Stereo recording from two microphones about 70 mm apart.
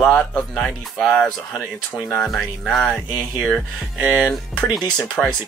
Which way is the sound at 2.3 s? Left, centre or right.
Centre.